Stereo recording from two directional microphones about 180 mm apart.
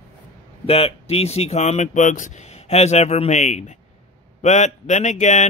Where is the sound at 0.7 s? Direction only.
35° left (ahead or behind).